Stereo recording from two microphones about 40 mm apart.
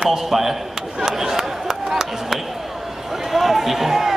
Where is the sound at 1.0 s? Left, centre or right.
Centre.